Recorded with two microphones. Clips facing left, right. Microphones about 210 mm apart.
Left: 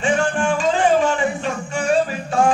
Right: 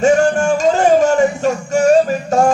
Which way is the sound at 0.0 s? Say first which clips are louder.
Right 7 dB; 45° right (ahead or behind).